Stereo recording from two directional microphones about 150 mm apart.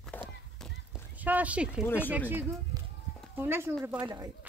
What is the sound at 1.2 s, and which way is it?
Speech, 10° right (ahead or behind).